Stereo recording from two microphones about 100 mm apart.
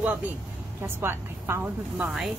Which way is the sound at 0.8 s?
25° right (ahead or behind).